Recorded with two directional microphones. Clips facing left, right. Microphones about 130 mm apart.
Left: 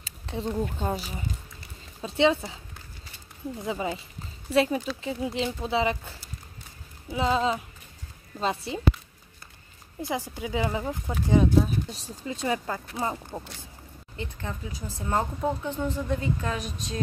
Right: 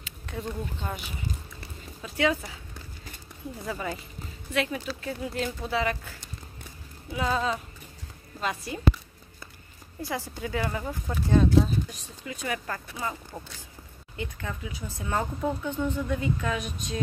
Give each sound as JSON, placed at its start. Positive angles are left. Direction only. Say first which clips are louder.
{"t": 0.0, "sound": "a sound", "louder": "left 3 dB", "side_deg": 25}
{"t": 0.7, "sound": "a woman's voice", "louder": "left 5 dB", "side_deg": 35}
{"t": 3.6, "sound": "speech", "louder": "left 3 dB", "side_deg": 20}
{"t": 4.5, "sound": "a woman's voice", "louder": "left 6 dB", "side_deg": 30}
{"t": 5.0, "sound": "speech", "louder": "left 2 dB", "side_deg": 20}
{"t": 10.0, "sound": "speech", "louder": "left 2 dB", "side_deg": 15}
{"t": 11.9, "sound": "a woman's voice", "louder": "left 4 dB", "side_deg": 30}